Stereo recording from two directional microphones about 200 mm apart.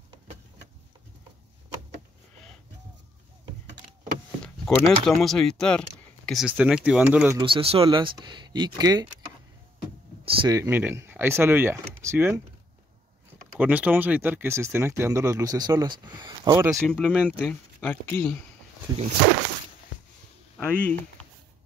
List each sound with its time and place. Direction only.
4.6 s speech: centre (ahead or behind)
7.3 s speech: 25° right (ahead or behind)
10.2 s speech: 25° right (ahead or behind)
13.6 s speech: 10° right (ahead or behind)
16.8 s speech: 5° left (ahead or behind)
20.5 s speech: 5° left (ahead or behind)